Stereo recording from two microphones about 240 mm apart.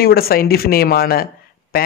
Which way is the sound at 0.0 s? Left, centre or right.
Left.